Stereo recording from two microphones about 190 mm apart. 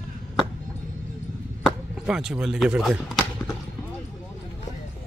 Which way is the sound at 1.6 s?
5° right (ahead or behind).